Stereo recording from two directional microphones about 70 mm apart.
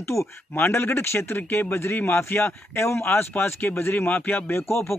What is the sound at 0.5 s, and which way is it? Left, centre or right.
A man's voice, left.